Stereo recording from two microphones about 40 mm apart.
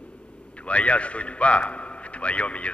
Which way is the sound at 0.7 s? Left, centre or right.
Left.